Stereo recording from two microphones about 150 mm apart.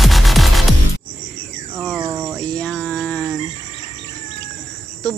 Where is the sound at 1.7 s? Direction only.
5° right (ahead or behind).